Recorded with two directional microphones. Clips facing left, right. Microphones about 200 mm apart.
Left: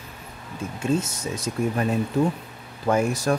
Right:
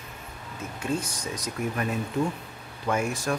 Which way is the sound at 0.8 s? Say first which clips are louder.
Left 5 dB; 25° left (ahead or behind).